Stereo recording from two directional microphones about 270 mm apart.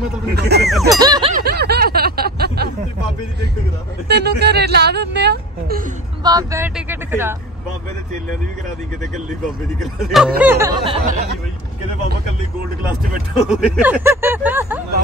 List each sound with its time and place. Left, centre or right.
0.3 s speech: right
0.8 s chink: centre
1.3 s snicker: right
4.1 s speech: right
6.2 s speech: centre
9.8 s speech: centre
13.5 s speech: centre